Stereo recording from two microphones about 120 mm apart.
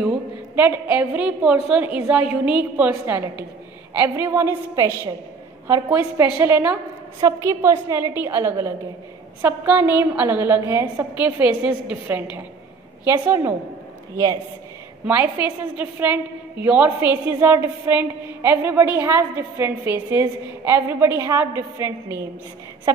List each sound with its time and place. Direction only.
0.6 s a woman's voice: 15° right (ahead or behind)
13.3 s a woman's voice: 20° right (ahead or behind)
15.0 s a woman's voice: 15° right (ahead or behind)